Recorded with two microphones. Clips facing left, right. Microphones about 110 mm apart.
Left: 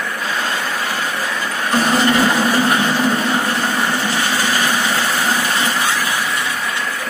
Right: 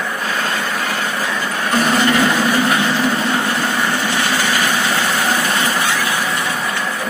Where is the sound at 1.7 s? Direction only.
30° left (ahead or behind).